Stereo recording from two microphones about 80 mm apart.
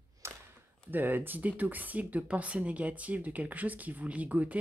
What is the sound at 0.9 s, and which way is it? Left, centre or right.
Speech, right.